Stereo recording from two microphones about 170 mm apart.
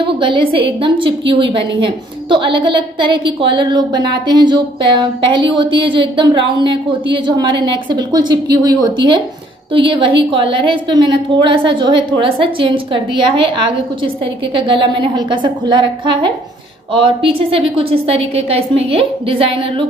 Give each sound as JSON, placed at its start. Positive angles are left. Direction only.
{"t": 0.0, "sound": "a woman's voice", "side_deg": -30}